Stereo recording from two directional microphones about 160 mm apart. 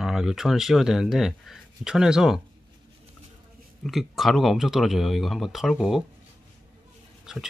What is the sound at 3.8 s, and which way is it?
Speech, centre (ahead or behind).